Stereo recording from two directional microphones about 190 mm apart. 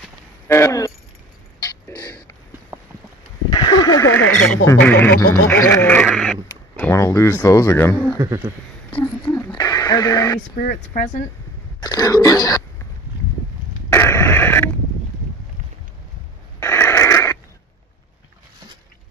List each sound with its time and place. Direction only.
0.5 s speech: 15° left (ahead or behind)
2.7 s a sound: 15° right (ahead or behind)
3.4 s speech: 25° left (ahead or behind)
8.2 s speech: 15° right (ahead or behind)
9.4 s radio: 20° left (ahead or behind)
10.5 s speech: 50° left (ahead or behind)
11.8 s speech: 20° left (ahead or behind)
13.8 s a sound: 15° left (ahead or behind)
16.5 s radio: 10° left (ahead or behind)